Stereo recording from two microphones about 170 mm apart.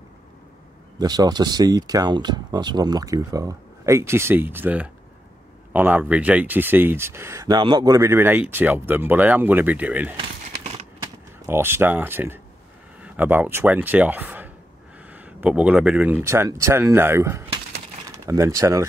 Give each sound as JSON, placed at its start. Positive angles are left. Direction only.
{"t": 0.9, "sound": "speech", "side_deg": -25}
{"t": 11.4, "sound": "speech", "side_deg": -15}